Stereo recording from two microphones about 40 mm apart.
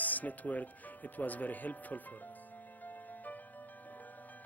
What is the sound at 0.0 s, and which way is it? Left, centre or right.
Speech, left.